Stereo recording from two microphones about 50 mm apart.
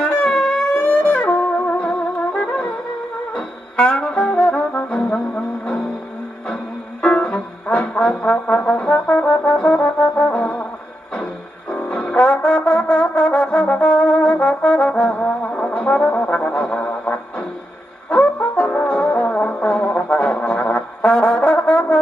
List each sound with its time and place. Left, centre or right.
0.1 s music: centre
3.3 s brass instrument: centre
5.1 s brass instrument: centre
7.0 s music: left
7.6 s brass instrument: left
11.9 s brass instrument: centre
12.2 s brass instrument: left
16.6 s music: centre
18.1 s brass instrument: left